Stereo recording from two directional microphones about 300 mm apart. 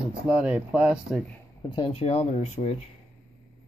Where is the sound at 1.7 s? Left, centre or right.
Centre.